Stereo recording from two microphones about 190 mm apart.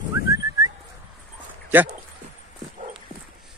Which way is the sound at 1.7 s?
10° right (ahead or behind).